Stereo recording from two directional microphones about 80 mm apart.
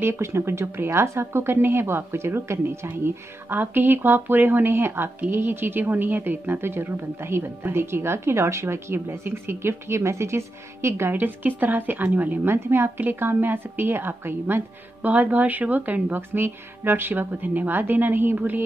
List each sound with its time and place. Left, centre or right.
0.0 s a woman's voice: right